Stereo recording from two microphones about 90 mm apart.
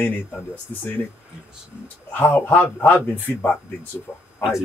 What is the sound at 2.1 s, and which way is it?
A man's voice, 20° left (ahead or behind).